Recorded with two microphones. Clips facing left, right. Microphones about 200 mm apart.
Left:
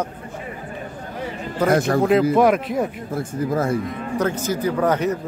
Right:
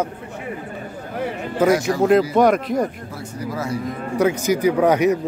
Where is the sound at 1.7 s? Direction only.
55° left (ahead or behind).